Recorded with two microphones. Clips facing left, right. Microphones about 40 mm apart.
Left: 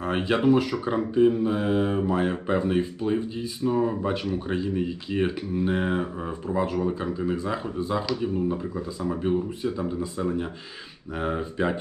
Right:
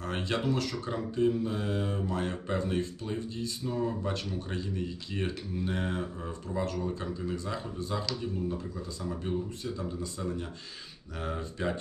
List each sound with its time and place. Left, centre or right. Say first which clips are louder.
0.0 s speech: left 9 dB; left